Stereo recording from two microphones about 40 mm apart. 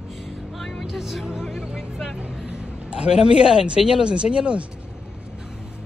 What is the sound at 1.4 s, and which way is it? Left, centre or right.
Music, centre.